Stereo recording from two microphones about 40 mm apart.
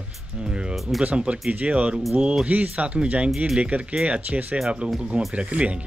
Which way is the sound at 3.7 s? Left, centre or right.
Right.